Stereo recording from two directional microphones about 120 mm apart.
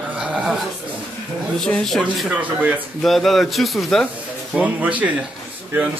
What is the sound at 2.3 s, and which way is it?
Speech, 15° right (ahead or behind).